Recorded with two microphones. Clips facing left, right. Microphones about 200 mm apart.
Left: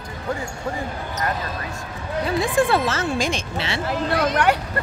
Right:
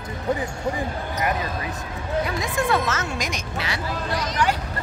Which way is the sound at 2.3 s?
30° left (ahead or behind).